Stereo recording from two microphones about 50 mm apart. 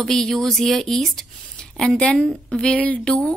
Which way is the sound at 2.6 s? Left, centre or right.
Left.